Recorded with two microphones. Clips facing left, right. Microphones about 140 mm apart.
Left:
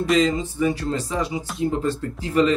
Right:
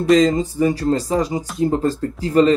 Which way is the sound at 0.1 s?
40° right (ahead or behind).